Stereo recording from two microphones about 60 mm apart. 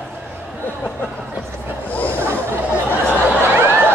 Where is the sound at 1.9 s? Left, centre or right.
Left.